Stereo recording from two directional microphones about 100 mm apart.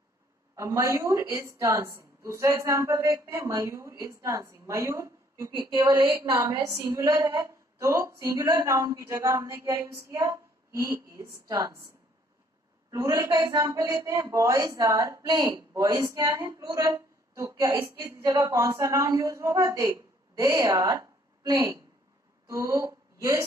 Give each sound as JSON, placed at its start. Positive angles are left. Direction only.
{"t": 0.6, "sound": "a woman's voice", "side_deg": -30}
{"t": 12.9, "sound": "a woman's voice", "side_deg": -30}